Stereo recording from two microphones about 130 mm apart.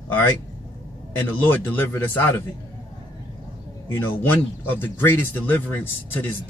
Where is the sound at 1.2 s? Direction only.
15° left (ahead or behind).